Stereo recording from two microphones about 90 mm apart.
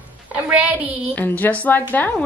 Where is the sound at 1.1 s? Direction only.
20° left (ahead or behind).